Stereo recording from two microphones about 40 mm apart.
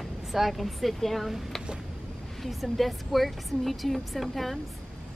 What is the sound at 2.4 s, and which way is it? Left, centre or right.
Speech, centre.